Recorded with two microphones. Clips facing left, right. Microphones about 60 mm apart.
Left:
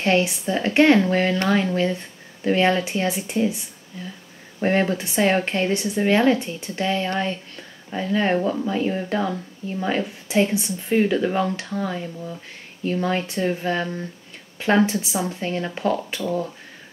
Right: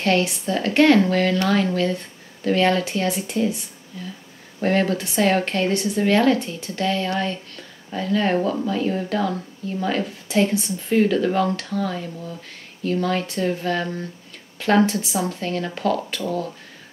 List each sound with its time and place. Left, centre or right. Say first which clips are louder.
0.0 s a woman's voice: even; centre
4.6 s speech: even; centre